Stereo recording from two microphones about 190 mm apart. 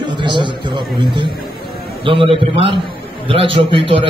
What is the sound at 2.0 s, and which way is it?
Speech, 25° right (ahead or behind).